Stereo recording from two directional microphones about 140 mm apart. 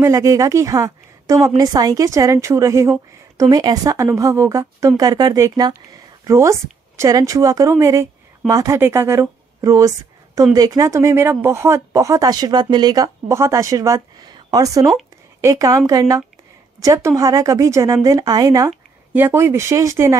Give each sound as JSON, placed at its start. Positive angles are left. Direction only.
{"t": 0.0, "sound": "a woman's voice", "side_deg": -20}